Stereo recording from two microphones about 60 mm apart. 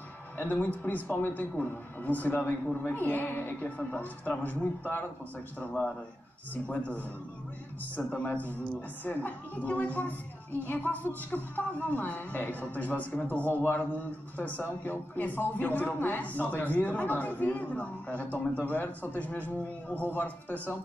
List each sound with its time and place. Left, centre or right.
0.4 s a man's voice: left
6.5 s a man's voice: left